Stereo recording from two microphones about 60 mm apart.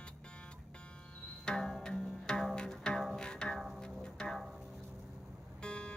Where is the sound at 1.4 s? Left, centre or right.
Centre.